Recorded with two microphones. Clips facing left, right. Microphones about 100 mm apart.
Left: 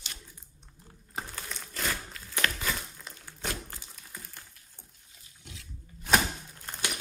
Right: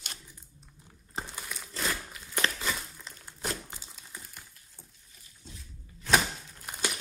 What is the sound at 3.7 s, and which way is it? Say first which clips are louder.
Crumpling: even; 15° right (ahead or behind).